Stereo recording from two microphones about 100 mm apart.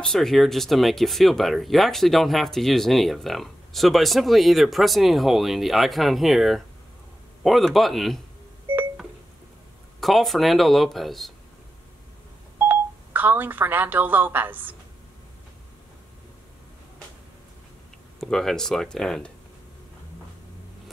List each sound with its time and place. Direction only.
0.0 s speech: 5° left (ahead or behind)
9.9 s speech: centre (ahead or behind)
12.6 s speech: 20° right (ahead or behind)
18.2 s speech: 5° left (ahead or behind)